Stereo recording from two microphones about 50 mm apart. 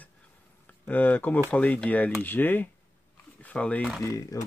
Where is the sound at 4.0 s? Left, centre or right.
Left.